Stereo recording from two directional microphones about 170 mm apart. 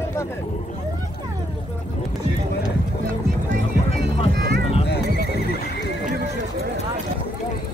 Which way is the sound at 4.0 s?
80° right.